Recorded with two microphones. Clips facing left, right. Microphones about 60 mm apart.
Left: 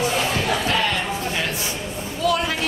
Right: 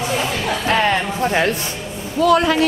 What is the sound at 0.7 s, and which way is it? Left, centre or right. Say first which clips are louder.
Speech: right 9 dB; right.